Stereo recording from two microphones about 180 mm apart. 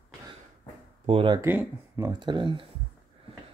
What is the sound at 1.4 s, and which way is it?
Speech, 10° right (ahead or behind).